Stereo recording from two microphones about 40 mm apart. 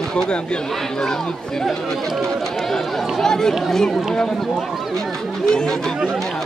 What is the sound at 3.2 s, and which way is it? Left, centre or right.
Speech, centre.